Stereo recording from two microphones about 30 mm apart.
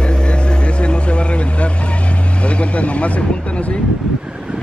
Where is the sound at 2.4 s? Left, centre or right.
Left.